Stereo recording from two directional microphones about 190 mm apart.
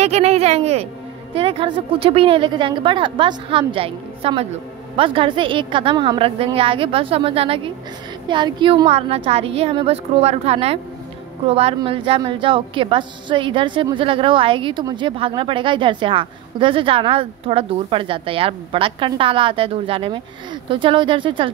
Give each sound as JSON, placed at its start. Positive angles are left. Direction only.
{"t": 0.0, "sound": "a woman's voice", "side_deg": -35}